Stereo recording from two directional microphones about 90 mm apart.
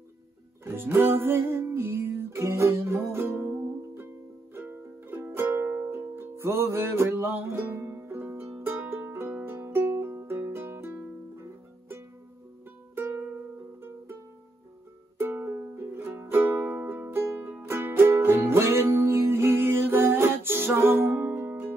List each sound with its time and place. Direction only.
0.7 s music: 25° right (ahead or behind)
12.9 s music: 25° right (ahead or behind)
15.1 s music: 20° right (ahead or behind)